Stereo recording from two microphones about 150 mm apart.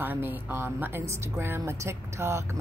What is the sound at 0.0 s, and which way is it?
Speech, 15° right (ahead or behind).